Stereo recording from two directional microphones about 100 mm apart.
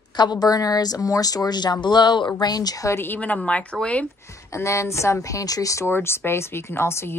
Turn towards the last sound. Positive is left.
turn(degrees=25)  # may be behind; listen again after turning